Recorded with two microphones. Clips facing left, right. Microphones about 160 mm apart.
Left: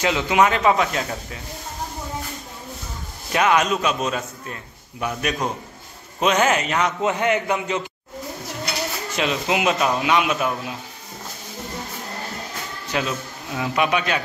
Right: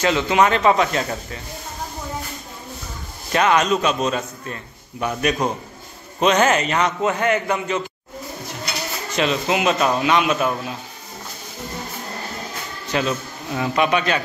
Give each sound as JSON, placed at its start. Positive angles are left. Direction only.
{"t": 0.0, "sound": "speech", "side_deg": 10}
{"t": 3.3, "sound": "a man's voice", "side_deg": 10}
{"t": 7.0, "sound": "speech", "side_deg": 15}
{"t": 9.1, "sound": "speech", "side_deg": 10}
{"t": 12.9, "sound": "speech", "side_deg": 5}